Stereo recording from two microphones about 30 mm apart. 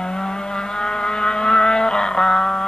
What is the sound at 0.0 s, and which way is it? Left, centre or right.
Vehicle, left.